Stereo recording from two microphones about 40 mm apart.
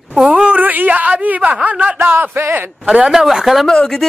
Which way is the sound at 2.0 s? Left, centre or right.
Right.